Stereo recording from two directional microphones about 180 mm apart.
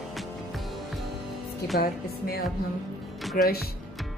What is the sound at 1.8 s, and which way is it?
A woman's voice, 55° left (ahead or behind).